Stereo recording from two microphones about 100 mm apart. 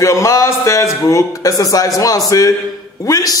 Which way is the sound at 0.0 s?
30° left (ahead or behind).